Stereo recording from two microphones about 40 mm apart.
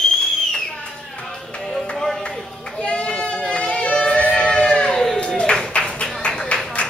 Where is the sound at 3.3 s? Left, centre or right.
Left.